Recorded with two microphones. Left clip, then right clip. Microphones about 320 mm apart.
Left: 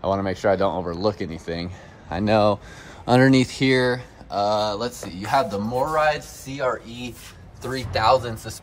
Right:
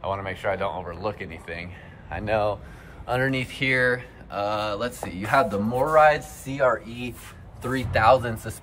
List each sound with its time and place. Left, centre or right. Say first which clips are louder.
0.0 s speech: left 6 dB; centre